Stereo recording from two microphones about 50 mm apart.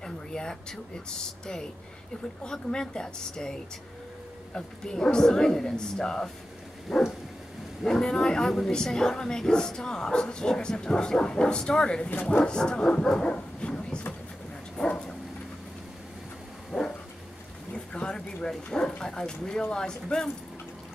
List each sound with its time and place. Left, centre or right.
0.0 s speech: centre
2.4 s speech: centre
4.6 s speech: centre
6.9 s dog: centre
7.8 s speech: centre
13.3 s bow-wow: centre
14.8 s dog: centre
16.7 s dog: centre
17.7 s bow-wow: centre
19.0 s speech: centre